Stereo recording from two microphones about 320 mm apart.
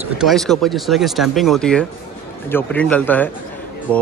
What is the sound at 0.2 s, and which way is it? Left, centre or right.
Speech, centre.